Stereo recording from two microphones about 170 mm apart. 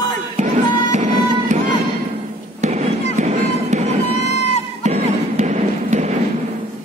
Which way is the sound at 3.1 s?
45° right (ahead or behind).